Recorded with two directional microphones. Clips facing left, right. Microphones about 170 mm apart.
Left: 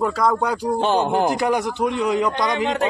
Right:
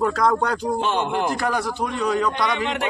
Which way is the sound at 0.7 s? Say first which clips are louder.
Left 4 dB; 35° left (ahead or behind).